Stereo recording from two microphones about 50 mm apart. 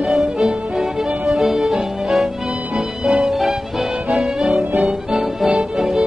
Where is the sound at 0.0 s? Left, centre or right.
Centre.